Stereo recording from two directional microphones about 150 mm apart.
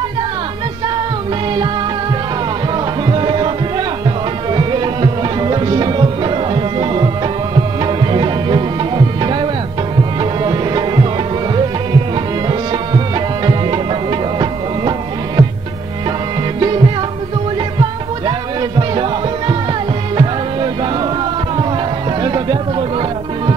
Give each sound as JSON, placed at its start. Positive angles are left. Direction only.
{"t": 3.1, "sound": "music", "side_deg": -30}
{"t": 4.5, "sound": "tabla", "side_deg": -35}
{"t": 7.8, "sound": "music", "side_deg": -30}
{"t": 14.4, "sound": "music", "side_deg": -30}
{"t": 16.5, "sound": "music", "side_deg": -30}
{"t": 18.8, "sound": "music", "side_deg": -30}
{"t": 22.2, "sound": "music", "side_deg": -30}